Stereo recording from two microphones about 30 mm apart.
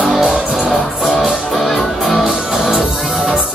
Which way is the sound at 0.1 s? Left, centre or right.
Centre.